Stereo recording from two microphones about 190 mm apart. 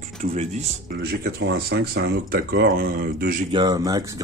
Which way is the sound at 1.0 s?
55° right (ahead or behind).